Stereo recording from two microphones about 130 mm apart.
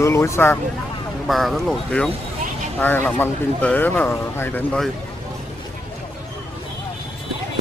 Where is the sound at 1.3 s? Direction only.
Centre (ahead or behind); by 4.6 s 15° left (ahead or behind).